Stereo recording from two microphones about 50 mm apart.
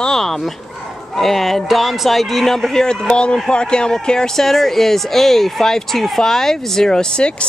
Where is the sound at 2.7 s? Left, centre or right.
Centre.